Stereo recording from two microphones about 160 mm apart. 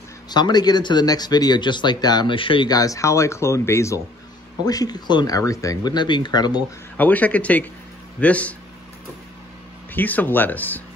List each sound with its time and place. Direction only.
0.3 s speech: 25° left (ahead or behind)
7.0 s speech: 10° left (ahead or behind)
9.9 s speech: 10° left (ahead or behind)